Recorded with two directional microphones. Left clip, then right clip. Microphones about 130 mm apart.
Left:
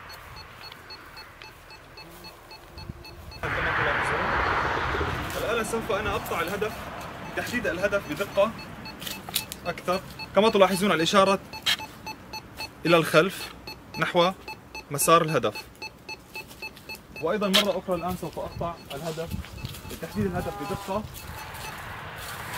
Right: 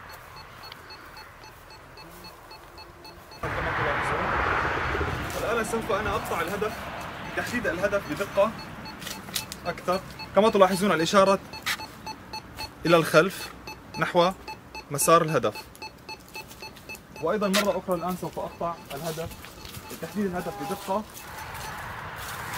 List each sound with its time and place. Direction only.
3.8 s a sound: 25° left (ahead or behind)
5.3 s speech: centre (ahead or behind)
6.9 s music: 25° right (ahead or behind)
7.3 s speech: centre (ahead or behind)
9.0 s a sound: centre (ahead or behind)
17.2 s speech: 5° right (ahead or behind)